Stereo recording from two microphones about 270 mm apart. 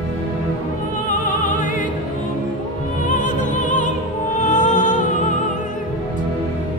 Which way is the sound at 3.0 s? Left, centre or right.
Left.